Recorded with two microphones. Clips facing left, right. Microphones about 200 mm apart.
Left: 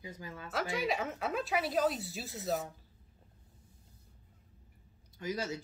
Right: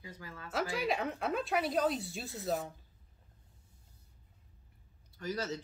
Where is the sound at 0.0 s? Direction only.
20° left (ahead or behind).